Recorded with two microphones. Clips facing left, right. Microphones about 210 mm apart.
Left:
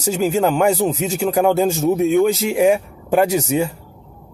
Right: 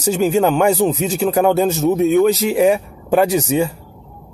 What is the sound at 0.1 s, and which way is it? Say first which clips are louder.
Speech: right 2 dB; 10° left (ahead or behind).